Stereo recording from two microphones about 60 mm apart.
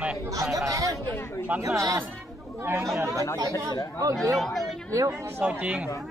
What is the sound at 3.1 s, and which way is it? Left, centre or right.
Speech, left.